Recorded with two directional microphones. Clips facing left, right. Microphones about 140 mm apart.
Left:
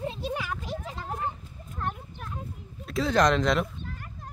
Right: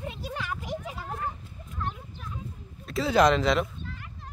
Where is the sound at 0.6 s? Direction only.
15° right (ahead or behind).